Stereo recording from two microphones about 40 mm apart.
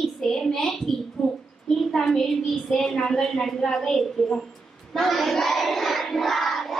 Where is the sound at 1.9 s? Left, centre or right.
Centre.